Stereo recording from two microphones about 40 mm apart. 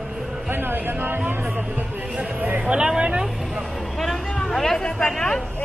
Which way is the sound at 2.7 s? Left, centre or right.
Right.